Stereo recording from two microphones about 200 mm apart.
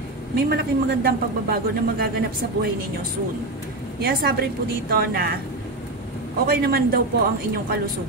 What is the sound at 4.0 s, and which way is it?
A woman's voice, 50° right (ahead or behind).